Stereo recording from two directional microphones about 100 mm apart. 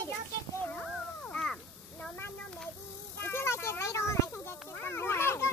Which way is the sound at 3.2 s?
25° left (ahead or behind).